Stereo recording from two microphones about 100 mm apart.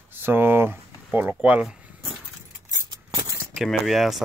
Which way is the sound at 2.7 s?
35° right (ahead or behind).